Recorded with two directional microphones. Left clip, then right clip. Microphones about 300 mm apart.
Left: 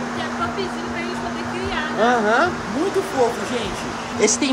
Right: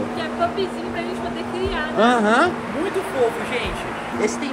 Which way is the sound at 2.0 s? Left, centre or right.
Right.